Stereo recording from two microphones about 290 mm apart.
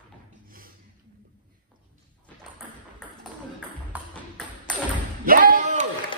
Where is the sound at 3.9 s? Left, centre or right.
Centre.